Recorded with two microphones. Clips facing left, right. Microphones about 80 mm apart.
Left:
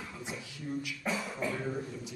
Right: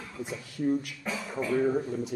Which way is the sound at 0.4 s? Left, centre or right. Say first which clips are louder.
Right 12 dB; right.